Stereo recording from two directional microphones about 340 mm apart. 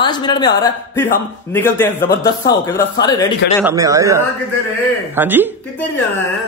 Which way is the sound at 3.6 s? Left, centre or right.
Centre.